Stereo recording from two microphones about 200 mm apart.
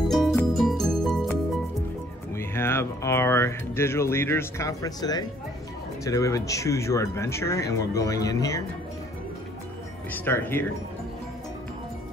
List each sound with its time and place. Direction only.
0.1 s music: centre (ahead or behind)
2.3 s music: 10° left (ahead or behind)
6.0 s speech: 15° left (ahead or behind)
10.1 s speech: 10° left (ahead or behind)